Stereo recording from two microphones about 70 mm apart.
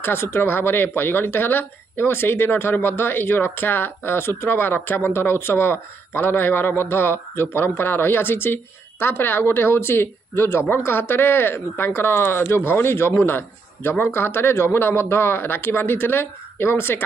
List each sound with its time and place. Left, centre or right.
0.0 s speech: left